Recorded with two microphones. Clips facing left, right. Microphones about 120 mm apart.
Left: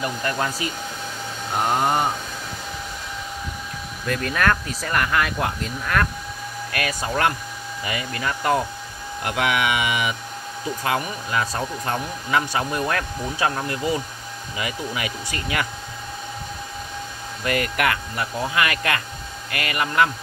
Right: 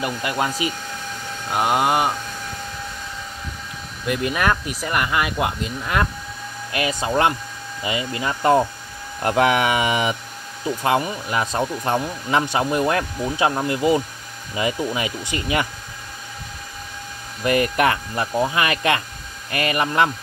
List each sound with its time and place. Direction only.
0.0 s speech: 15° right (ahead or behind)
4.0 s speech: 15° right (ahead or behind)
17.5 s speech: 25° right (ahead or behind)